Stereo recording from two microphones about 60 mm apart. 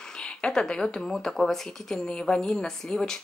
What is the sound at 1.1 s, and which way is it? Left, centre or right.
A woman's voice, centre.